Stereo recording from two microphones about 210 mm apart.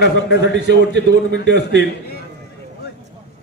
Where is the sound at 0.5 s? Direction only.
55° right (ahead or behind).